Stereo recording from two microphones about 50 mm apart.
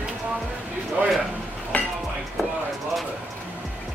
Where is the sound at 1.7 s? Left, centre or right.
Left.